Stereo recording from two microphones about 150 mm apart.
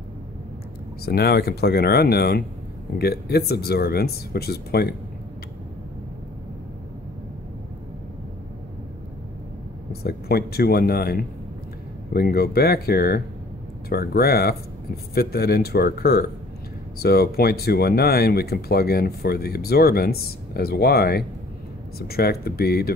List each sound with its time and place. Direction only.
1.0 s speech: 90° left
10.0 s speech: 90° left